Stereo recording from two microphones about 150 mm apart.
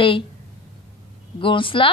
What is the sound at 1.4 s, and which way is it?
Speech, 35° left (ahead or behind).